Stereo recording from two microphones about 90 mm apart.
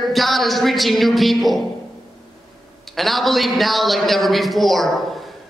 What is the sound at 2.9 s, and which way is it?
A man's voice, centre (ahead or behind).